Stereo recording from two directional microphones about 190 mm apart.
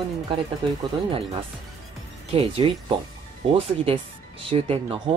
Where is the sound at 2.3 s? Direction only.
30° right (ahead or behind).